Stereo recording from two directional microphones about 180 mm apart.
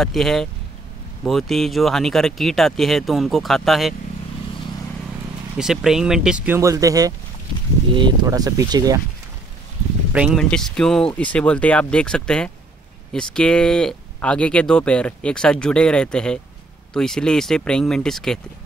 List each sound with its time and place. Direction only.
0.0 s speech: centre (ahead or behind)
5.6 s speech: centre (ahead or behind); by 9.0 s 20° right (ahead or behind)
10.1 s speech: 5° right (ahead or behind)